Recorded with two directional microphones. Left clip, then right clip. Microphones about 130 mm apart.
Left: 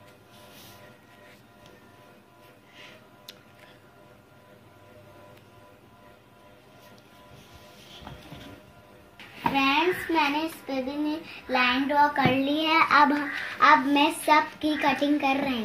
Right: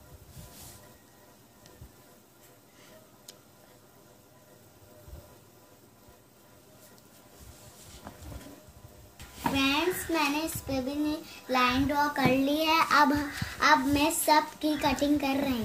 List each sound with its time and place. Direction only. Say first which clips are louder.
9.4 s a sound: left 4 dB; 15° right (ahead or behind)
10.7 s child singing: left 1 dB; 20° right (ahead or behind)
11.6 s child singing: left 5 dB; 5° right (ahead or behind)